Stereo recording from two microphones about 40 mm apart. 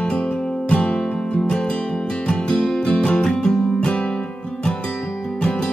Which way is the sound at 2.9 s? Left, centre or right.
Left.